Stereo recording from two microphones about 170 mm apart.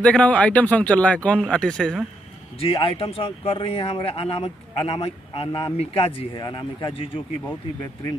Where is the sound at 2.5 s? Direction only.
35° left (ahead or behind).